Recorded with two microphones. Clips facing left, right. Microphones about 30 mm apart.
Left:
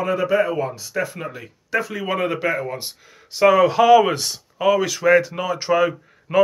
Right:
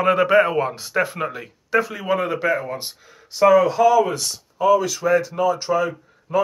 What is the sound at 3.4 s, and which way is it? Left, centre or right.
Speech, left.